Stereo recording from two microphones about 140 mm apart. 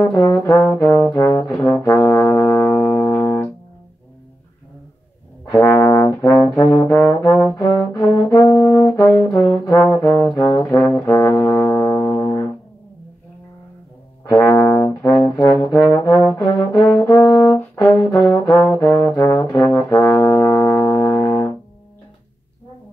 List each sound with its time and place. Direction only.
0.1 s brass instrument: 20° left (ahead or behind)
2.7 s music: 5° left (ahead or behind)
3.0 s music: 20° left (ahead or behind)
5.4 s brass instrument: 20° left (ahead or behind)
14.2 s brass instrument: 25° left (ahead or behind)
18.1 s brass instrument: centre (ahead or behind)
18.5 s brass instrument: 20° left (ahead or behind)